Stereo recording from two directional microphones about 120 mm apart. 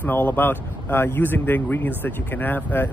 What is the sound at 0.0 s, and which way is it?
Speech, 15° left (ahead or behind).